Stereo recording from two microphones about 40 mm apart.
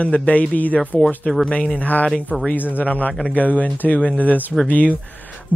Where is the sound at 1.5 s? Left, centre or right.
Left.